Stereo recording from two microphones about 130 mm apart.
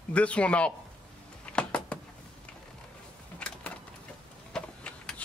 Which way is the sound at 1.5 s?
10° left (ahead or behind).